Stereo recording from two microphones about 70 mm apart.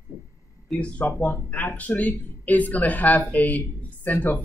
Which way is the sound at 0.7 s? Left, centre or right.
Centre.